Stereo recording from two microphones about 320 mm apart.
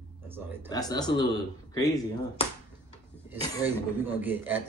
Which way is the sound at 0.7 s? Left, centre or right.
Centre.